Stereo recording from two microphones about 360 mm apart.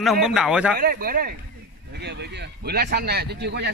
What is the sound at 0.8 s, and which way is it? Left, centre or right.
Speech, right.